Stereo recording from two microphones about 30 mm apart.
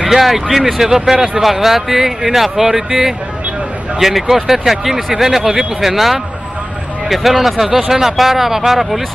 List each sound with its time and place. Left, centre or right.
0.0 s speech: centre
4.0 s speech: centre